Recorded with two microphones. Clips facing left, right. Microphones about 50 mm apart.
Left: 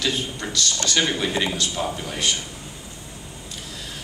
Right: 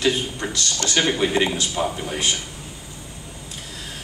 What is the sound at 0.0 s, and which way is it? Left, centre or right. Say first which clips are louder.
A man's voice: right 4 dB; right.